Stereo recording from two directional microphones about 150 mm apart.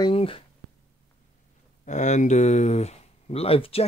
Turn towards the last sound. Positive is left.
turn(degrees=40)  # may be behind; listen again after turning